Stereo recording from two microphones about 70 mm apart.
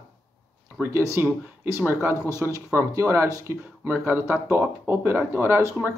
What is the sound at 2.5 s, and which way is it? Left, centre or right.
Speech, right.